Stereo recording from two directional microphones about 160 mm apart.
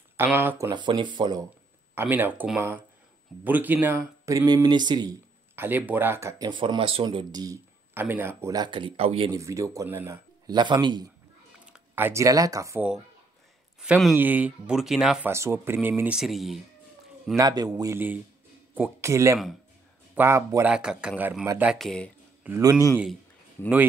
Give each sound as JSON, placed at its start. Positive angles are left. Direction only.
{"t": 0.2, "sound": "speech", "side_deg": -10}
{"t": 0.7, "sound": "speech", "side_deg": -30}
{"t": 2.0, "sound": "speech", "side_deg": -10}
{"t": 5.6, "sound": "speech", "side_deg": -10}
{"t": 9.3, "sound": "speech", "side_deg": -20}
{"t": 11.7, "sound": "speech", "side_deg": -15}
{"t": 13.7, "sound": "speech", "side_deg": 0}
{"t": 15.3, "sound": "speech", "side_deg": -15}
{"t": 17.4, "sound": "speech", "side_deg": -25}
{"t": 17.9, "sound": "speech", "side_deg": -10}
{"t": 20.7, "sound": "speech", "side_deg": -5}
{"t": 21.7, "sound": "speech", "side_deg": 5}
{"t": 22.6, "sound": "speech", "side_deg": -25}
{"t": 23.6, "sound": "speech", "side_deg": 15}